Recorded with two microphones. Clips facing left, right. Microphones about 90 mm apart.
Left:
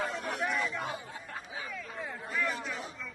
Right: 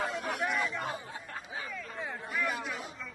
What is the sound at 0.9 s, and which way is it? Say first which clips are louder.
Snicker: right 1 dB; 35° right (ahead or behind).